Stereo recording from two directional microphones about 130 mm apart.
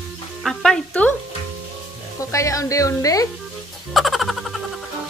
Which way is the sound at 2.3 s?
25° left (ahead or behind).